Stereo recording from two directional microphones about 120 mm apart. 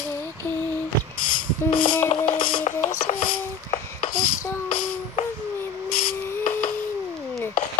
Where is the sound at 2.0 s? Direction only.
90° left.